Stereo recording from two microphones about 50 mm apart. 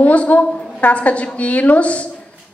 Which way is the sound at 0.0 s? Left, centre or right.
Left.